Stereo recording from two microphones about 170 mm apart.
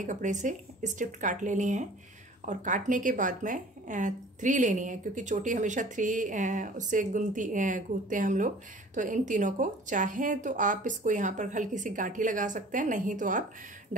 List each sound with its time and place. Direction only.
0.0 s speech: 45° right (ahead or behind)